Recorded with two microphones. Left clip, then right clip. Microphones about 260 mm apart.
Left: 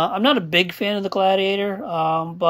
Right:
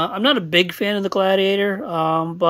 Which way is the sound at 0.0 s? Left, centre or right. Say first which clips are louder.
Even; right.